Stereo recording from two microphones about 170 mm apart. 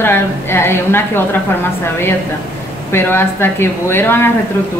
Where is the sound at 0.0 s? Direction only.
15° left (ahead or behind).